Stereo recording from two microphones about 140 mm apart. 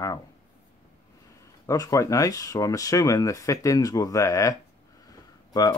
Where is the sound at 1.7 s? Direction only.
25° left (ahead or behind).